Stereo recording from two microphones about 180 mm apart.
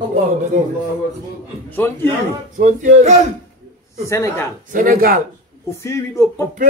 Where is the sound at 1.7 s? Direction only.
10° left (ahead or behind).